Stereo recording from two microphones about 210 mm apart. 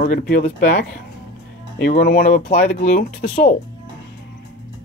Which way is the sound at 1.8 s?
40° left (ahead or behind).